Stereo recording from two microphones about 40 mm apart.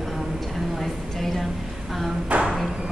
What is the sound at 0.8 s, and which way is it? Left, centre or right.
Speech, centre.